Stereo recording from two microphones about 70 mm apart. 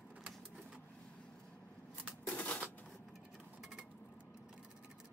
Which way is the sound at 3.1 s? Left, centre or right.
Centre.